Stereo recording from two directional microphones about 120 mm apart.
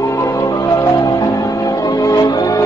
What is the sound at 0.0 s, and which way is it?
Music, 25° left (ahead or behind).